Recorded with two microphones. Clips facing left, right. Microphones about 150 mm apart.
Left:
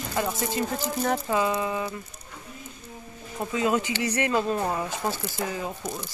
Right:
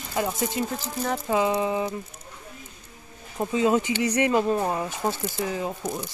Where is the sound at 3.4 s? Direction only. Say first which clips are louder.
Right 3 dB; 20° right (ahead or behind).